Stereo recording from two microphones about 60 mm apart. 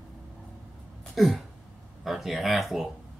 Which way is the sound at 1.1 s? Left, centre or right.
Centre.